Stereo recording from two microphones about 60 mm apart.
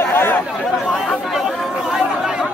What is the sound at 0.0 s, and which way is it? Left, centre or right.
Chatter, left.